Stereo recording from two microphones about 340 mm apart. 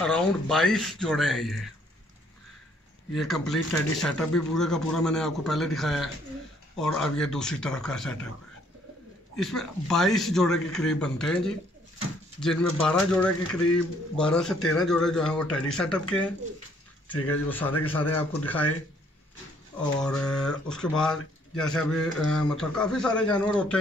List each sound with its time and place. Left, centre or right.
0.0 s speech: centre
3.2 s speech: centre
9.4 s speech: centre
17.5 s speech: centre
20.0 s speech: centre